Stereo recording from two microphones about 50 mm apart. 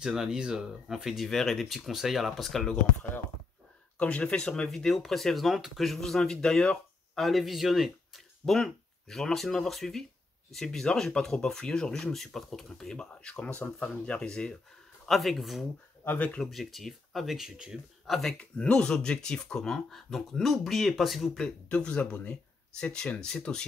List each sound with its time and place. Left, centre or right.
0.0 s speech: centre
4.0 s speech: left
7.2 s speech: centre
8.5 s speech: centre
12.0 s speech: centre
12.9 s speech: centre
15.0 s speech: centre
18.4 s speech: centre
21.6 s speech: left
23.2 s speech: centre